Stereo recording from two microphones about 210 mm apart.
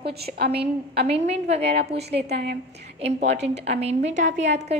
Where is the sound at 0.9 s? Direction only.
30° right (ahead or behind).